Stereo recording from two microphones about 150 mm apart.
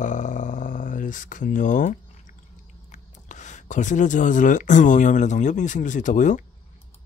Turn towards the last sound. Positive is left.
turn(degrees=60)  # may be behind; listen again after turning